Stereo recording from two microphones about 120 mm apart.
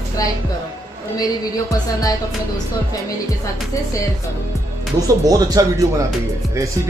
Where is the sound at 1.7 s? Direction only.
30° left (ahead or behind).